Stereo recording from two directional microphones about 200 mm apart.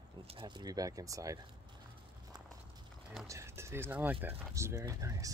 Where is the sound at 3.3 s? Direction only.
15° right (ahead or behind).